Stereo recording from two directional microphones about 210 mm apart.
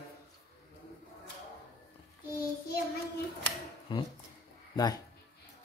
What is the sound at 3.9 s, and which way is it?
Speech, 20° left (ahead or behind).